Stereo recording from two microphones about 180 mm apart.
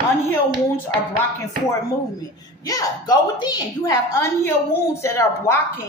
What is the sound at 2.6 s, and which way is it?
A woman's voice, 20° left (ahead or behind).